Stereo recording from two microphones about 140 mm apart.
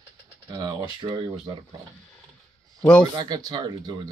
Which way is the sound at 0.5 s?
30° right (ahead or behind).